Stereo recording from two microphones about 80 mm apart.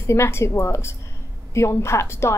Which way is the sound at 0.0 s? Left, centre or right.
Left.